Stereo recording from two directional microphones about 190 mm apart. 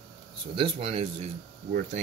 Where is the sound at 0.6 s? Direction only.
30° right (ahead or behind).